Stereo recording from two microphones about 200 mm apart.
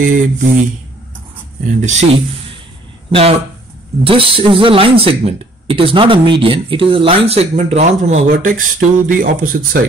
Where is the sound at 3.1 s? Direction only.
30° right (ahead or behind); by 9.8 s 45° right (ahead or behind).